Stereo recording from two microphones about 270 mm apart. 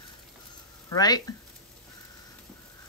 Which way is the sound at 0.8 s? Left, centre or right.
Centre.